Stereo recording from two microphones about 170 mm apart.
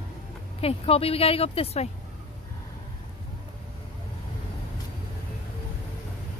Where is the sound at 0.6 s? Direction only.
35° left (ahead or behind).